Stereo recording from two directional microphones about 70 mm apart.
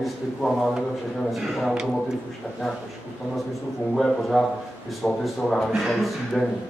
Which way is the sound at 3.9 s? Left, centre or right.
Centre.